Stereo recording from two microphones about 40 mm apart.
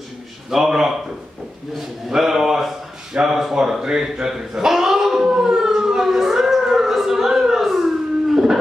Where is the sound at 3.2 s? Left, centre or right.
Centre.